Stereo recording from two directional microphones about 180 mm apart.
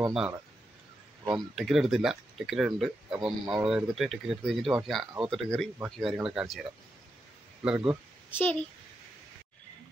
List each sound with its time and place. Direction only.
0.0 s speech: 5° right (ahead or behind)
1.3 s speech: centre (ahead or behind)
7.6 s speech: 5° right (ahead or behind)
8.3 s speech: 10° left (ahead or behind)